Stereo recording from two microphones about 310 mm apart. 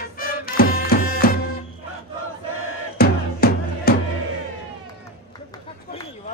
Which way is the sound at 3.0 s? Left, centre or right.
Left.